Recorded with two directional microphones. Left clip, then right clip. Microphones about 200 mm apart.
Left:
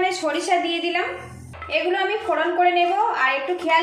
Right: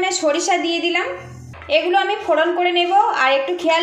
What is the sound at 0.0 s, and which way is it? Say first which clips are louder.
A woman's voice: right 4 dB; 25° right (ahead or behind).